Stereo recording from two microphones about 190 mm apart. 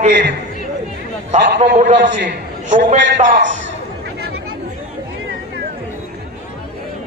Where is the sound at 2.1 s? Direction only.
70° right (ahead or behind).